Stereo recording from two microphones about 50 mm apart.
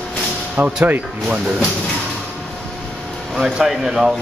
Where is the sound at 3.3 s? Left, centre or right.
Centre.